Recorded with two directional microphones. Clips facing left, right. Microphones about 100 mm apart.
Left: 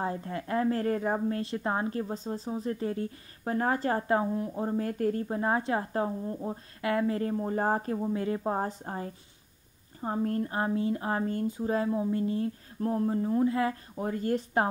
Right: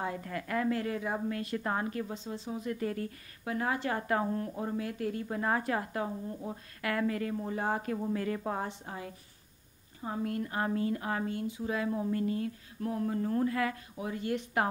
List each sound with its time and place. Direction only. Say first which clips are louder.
0.0 s a woman's voice: left 3 dB; 30° left (ahead or behind)
3.4 s a woman's voice: left 4 dB; 40° left (ahead or behind)
4.1 s a woman's voice: left 3 dB; 15° left (ahead or behind)
4.6 s a woman's voice: left 4 dB; 30° left (ahead or behind)
4.8 s a woman's voice: left 6 dB; 40° left (ahead or behind)
5.3 s speech: left 3 dB; 25° left (ahead or behind)
8.0 s speech: left 3 dB; 25° left (ahead or behind)
8.5 s a woman's voice: left 5 dB; 40° left (ahead or behind)
11.9 s speech: left 3 dB; 20° left (ahead or behind)
13.3 s a woman's voice: left 4 dB; 15° left (ahead or behind)
13.9 s a woman's voice: left 6 dB; 45° left (ahead or behind)